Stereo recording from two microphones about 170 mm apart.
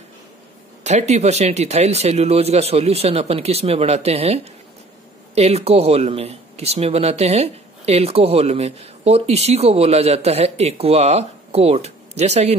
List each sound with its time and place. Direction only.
0.8 s speech: 40° right (ahead or behind)